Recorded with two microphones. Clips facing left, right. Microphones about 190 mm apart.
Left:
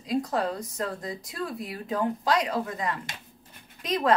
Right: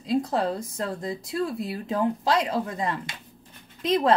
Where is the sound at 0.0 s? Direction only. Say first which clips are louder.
Right 3 dB; 25° right (ahead or behind).